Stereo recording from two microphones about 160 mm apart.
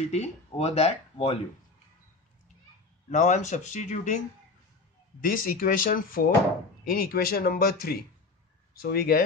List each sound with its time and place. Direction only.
0.0 s speech: 45° left (ahead or behind)
3.1 s speech: 50° left (ahead or behind)
5.2 s speech: 60° left (ahead or behind)